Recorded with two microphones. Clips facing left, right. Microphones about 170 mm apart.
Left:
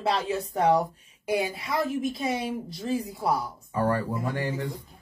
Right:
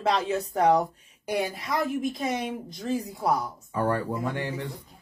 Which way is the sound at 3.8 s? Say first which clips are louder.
Even; 20° right (ahead or behind).